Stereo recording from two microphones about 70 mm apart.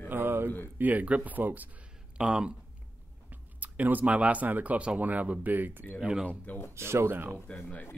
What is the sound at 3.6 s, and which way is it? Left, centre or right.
Speech, right.